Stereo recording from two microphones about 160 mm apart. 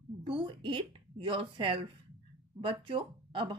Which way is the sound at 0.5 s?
30° right (ahead or behind).